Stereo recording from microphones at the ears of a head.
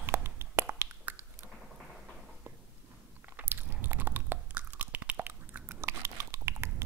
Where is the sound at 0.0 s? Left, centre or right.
Right.